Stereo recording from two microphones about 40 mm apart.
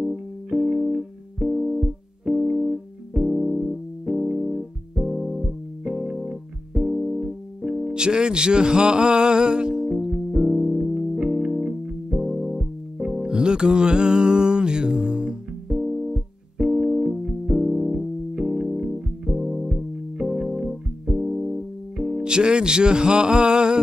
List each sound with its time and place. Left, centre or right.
0.5 s music: centre
22.2 s music: right